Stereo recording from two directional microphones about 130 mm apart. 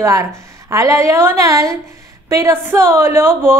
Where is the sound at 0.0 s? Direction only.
25° right (ahead or behind).